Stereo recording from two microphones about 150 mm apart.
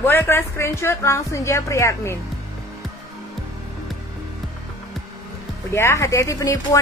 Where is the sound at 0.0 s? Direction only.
15° left (ahead or behind).